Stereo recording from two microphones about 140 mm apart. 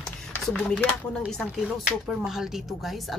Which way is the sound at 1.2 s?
Centre (ahead or behind).